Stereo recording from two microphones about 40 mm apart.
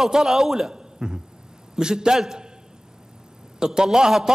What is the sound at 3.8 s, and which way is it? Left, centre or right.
Speech, centre.